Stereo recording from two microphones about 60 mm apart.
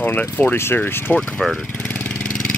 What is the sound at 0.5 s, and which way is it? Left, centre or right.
Speech, left.